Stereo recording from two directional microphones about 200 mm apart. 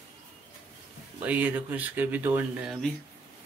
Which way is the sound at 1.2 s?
5° right (ahead or behind).